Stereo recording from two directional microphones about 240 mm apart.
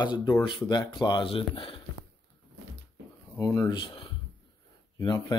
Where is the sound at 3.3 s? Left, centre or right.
Centre.